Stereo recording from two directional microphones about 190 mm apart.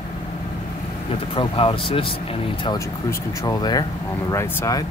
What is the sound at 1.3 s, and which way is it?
Speech, 30° left (ahead or behind).